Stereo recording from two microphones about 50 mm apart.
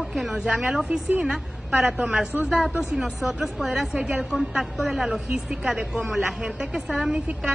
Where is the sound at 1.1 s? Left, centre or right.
Right.